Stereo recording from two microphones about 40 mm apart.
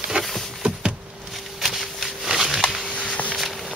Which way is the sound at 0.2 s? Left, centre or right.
Right.